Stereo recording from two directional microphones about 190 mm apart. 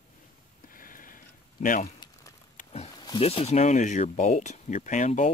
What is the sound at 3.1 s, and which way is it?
Speech, 30° left (ahead or behind).